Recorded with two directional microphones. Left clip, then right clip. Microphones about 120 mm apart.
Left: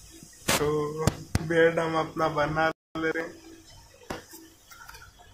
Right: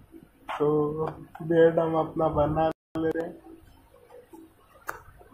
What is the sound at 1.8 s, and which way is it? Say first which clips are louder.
Speech: right 2 dB; 25° right (ahead or behind).